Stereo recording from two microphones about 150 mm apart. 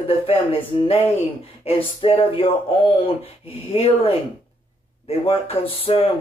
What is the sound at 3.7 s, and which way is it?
Speech, 40° left (ahead or behind).